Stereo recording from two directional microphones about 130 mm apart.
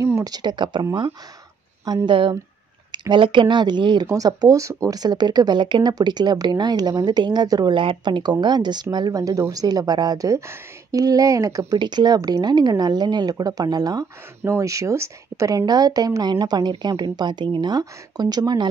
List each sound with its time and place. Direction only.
0.0 s speech: 25° right (ahead or behind)
2.0 s speech: 40° right (ahead or behind)